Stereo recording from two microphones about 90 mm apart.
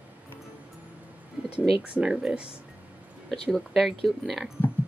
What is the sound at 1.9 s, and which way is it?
Speech, 10° right (ahead or behind).